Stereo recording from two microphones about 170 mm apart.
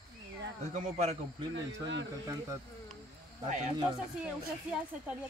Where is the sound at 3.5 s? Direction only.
45° right (ahead or behind).